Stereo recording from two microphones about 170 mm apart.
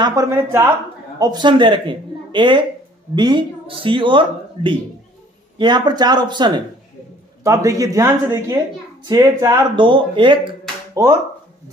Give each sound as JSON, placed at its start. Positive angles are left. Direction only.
{"t": 0.0, "sound": "speech", "side_deg": -20}
{"t": 9.8, "sound": "speech", "side_deg": -30}
{"t": 11.0, "sound": "speech", "side_deg": -20}